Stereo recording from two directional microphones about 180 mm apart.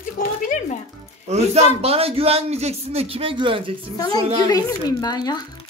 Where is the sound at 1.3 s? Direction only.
35° right (ahead or behind).